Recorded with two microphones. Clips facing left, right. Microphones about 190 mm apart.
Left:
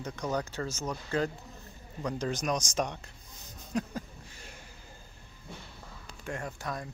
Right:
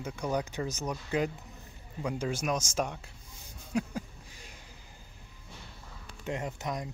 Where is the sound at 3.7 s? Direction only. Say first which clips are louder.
Right 1 dB; 10° right (ahead or behind).